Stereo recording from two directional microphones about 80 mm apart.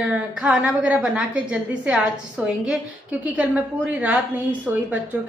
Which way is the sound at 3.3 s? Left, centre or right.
Centre.